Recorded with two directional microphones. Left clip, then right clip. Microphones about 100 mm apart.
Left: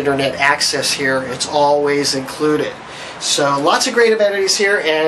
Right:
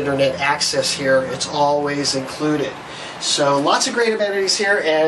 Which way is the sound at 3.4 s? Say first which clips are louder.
Left 2 dB; 25° left (ahead or behind).